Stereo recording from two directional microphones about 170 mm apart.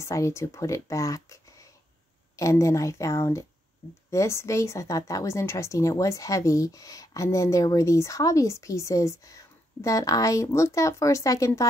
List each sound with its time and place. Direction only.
0.0 s speech: 15° left (ahead or behind)